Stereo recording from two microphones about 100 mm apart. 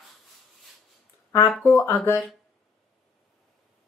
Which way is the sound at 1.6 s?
20° left (ahead or behind).